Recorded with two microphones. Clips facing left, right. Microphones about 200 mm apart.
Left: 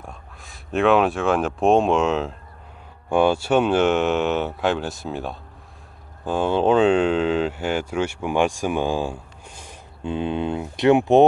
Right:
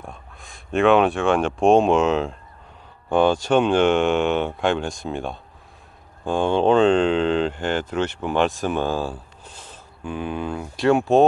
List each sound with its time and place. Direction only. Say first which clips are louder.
0.0 s speech: right 1 dB; centre (ahead or behind)
10.0 s speech: left 3 dB; 25° left (ahead or behind)